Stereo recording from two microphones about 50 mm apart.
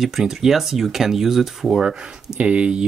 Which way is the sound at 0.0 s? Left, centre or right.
Centre.